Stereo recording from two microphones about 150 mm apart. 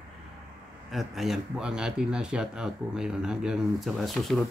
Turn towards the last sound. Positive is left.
turn(degrees=0)  # may be behind; listen again after turning